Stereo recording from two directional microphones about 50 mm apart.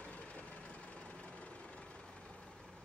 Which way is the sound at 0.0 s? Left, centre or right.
Left.